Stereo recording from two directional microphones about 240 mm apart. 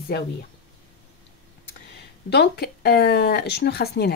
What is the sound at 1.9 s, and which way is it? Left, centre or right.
Speech, left.